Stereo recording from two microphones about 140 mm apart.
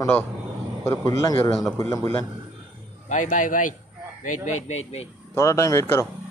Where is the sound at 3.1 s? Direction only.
65° left (ahead or behind).